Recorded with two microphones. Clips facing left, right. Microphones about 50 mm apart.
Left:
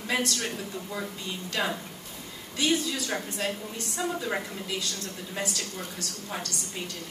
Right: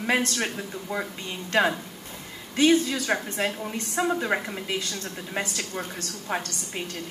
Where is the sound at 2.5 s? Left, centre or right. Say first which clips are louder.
Right 7 dB; right.